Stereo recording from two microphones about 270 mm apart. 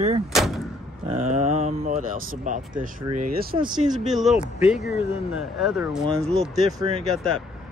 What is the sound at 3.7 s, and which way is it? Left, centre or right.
Speech, centre.